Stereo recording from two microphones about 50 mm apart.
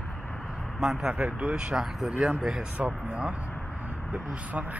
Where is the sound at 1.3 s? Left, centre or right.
Right.